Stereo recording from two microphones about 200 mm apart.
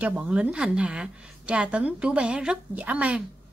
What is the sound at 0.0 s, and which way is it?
A woman's voice, 5° right (ahead or behind).